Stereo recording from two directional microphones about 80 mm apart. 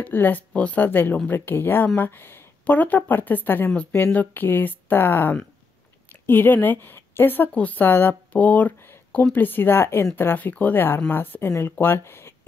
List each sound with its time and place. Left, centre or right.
0.0 s speech: left